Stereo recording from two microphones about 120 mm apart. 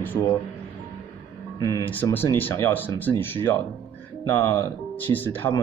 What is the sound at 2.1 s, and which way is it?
Speech, 15° left (ahead or behind).